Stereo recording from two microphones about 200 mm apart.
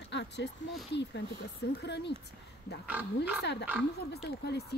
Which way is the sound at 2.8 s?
5° right (ahead or behind).